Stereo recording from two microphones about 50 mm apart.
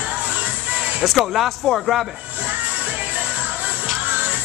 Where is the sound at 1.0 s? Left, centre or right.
Centre.